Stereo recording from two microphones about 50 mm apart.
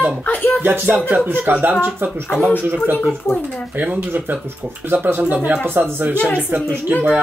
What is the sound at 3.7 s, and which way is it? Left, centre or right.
Speech, right.